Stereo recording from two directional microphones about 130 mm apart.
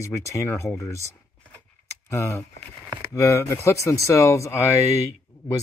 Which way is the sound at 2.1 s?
25° left (ahead or behind).